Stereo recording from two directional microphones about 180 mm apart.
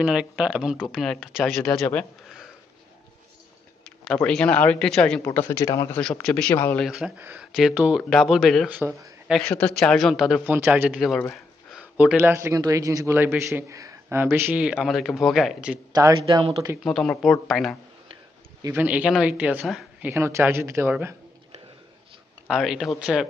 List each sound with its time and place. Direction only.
0.0 s speech: 5° right (ahead or behind)
3.8 s speech: 5° left (ahead or behind)
6.2 s speech: 5° left (ahead or behind)
6.9 s speech: 5° right (ahead or behind)
8.6 s a man's voice: 10° right (ahead or behind)
9.3 s a man's voice: 5° left (ahead or behind)
15.9 s speech: 20° right (ahead or behind)
16.8 s speech: centre (ahead or behind)
18.6 s a man's voice: 10° right (ahead or behind)
20.1 s a man's voice: 15° right (ahead or behind)
22.5 s speech: centre (ahead or behind)